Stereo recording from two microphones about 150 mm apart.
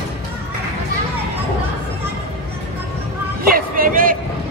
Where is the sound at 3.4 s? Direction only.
75° right (ahead or behind).